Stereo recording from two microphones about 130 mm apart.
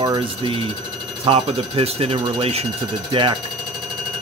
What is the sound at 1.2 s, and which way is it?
Speech, 50° right (ahead or behind).